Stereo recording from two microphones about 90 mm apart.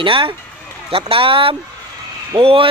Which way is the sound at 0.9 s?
90° right.